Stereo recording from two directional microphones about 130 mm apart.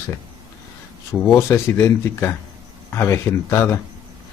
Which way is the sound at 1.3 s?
20° left (ahead or behind).